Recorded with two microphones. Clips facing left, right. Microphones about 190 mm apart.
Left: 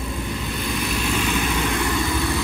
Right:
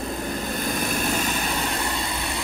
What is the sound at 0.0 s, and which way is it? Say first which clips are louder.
Vehicle: even; 40° right (ahead or behind).